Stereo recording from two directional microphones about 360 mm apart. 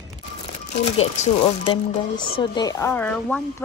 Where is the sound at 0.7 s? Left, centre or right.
Centre.